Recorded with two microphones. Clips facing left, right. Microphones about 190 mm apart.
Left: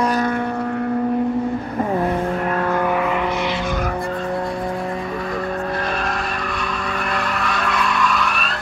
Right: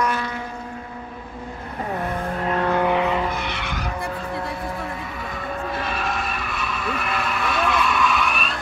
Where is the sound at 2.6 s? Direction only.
20° right (ahead or behind).